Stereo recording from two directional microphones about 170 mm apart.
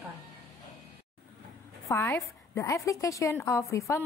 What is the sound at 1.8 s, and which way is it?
A woman's voice, 15° left (ahead or behind).